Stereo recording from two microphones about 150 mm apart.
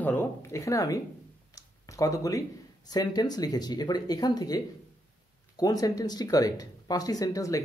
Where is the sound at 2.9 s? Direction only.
25° left (ahead or behind).